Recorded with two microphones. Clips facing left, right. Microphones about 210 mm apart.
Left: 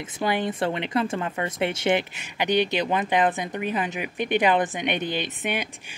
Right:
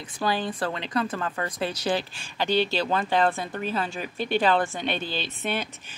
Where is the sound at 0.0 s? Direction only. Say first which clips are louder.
Left 2 dB; 20° left (ahead or behind).